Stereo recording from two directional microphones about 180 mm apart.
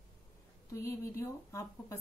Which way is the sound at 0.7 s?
15° left (ahead or behind).